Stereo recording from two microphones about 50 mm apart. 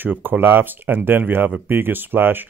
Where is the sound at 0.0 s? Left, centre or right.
Right.